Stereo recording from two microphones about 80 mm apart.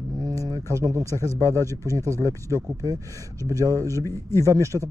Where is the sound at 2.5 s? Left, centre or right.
Right.